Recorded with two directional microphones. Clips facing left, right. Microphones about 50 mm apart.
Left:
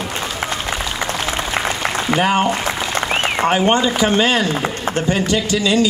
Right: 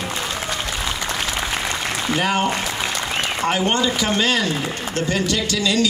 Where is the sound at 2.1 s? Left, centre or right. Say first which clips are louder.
Left 4 dB; left.